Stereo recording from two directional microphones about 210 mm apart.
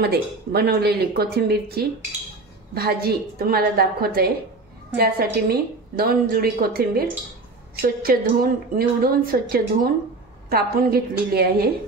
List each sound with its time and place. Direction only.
0.0 s a woman's voice: 50° right (ahead or behind)